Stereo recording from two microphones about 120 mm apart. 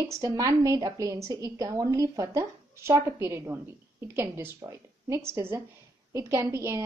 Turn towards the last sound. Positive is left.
turn(degrees=-25)  # may be behind; listen again after turning